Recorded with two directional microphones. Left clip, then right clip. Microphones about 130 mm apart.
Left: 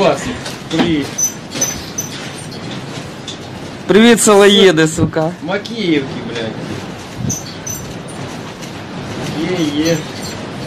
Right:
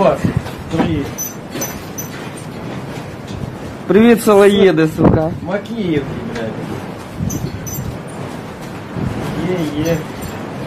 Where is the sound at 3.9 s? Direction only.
20° left (ahead or behind).